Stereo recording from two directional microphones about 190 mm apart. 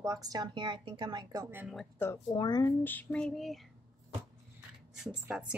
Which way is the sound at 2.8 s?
10° left (ahead or behind).